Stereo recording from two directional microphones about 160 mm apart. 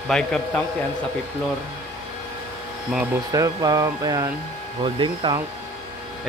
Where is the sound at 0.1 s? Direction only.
5° left (ahead or behind).